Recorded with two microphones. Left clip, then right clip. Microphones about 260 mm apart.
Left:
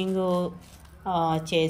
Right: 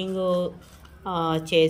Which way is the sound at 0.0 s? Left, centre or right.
Centre.